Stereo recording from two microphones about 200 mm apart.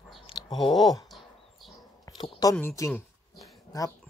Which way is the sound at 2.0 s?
20° left (ahead or behind).